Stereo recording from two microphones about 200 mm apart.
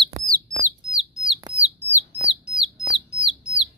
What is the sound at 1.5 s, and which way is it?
Bird, 10° right (ahead or behind).